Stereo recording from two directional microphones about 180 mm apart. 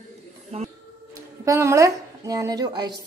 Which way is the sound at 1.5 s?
15° right (ahead or behind).